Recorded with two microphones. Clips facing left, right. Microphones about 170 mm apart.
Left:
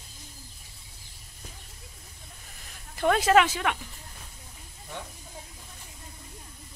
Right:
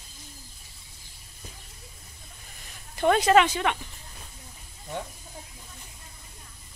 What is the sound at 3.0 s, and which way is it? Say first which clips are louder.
Speech: right 1 dB; centre (ahead or behind).